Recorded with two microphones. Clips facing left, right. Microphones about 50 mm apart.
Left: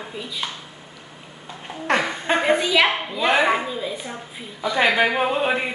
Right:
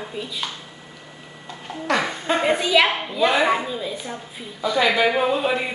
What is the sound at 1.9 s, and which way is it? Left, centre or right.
Speech, left.